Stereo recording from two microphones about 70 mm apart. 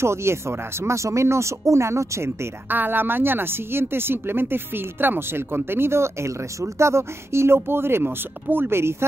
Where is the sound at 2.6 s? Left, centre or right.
Right.